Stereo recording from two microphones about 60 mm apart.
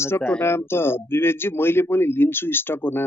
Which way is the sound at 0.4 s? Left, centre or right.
Left.